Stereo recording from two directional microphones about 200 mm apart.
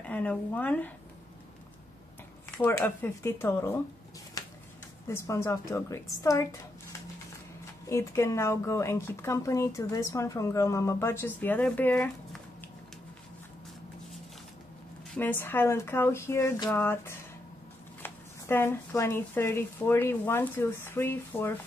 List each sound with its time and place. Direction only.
0.0 s speech: 5° left (ahead or behind)
2.5 s speech: 10° left (ahead or behind)
4.4 s a sound: 15° left (ahead or behind)
5.0 s speech: 15° left (ahead or behind)
15.1 s speech: 10° left (ahead or behind)